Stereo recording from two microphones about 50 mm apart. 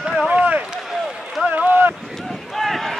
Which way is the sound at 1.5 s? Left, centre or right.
Right.